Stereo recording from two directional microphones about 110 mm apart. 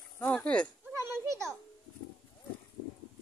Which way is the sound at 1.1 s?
25° right (ahead or behind).